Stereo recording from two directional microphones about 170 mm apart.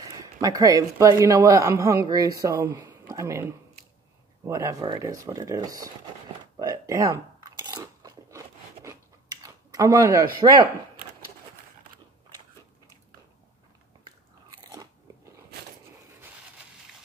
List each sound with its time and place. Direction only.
0.0 s speech: 20° right (ahead or behind)
6.5 s a sound: 20° right (ahead or behind)
7.7 s chewing: 20° right (ahead or behind)
8.8 s a sound: 20° right (ahead or behind)
10.4 s speech: 25° right (ahead or behind)
14.5 s biting: 20° right (ahead or behind)